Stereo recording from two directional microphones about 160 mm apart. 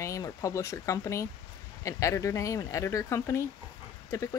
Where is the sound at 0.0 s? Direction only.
20° left (ahead or behind).